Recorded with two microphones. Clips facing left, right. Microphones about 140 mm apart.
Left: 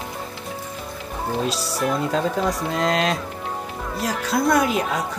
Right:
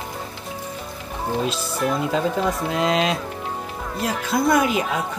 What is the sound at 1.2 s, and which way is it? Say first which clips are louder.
Speech: right 1 dB; centre (ahead or behind).